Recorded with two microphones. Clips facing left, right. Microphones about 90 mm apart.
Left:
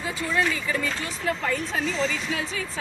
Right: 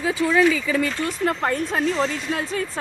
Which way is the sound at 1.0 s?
50° right (ahead or behind).